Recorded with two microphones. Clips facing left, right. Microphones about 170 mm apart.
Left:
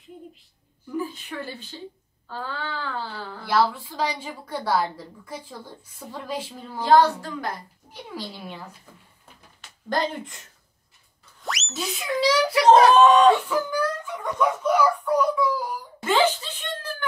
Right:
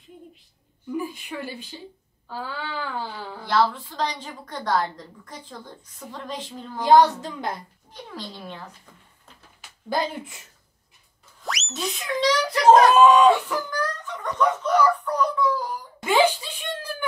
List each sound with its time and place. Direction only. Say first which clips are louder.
0.9 s speech: even; 15° right (ahead or behind)
3.4 s a woman's voice: even; 10° left (ahead or behind)
6.8 s speech: right 1 dB; 15° right (ahead or behind)
7.9 s a woman's voice: left 2 dB; 10° left (ahead or behind)
9.6 s speech: even; 5° right (ahead or behind)
11.4 s speech: right 1 dB; centre (ahead or behind)
12.6 s speech: right 1 dB; 10° right (ahead or behind)
13.7 s a sound: left 3 dB; 10° left (ahead or behind)
16.0 s wail: right 1 dB; 15° right (ahead or behind)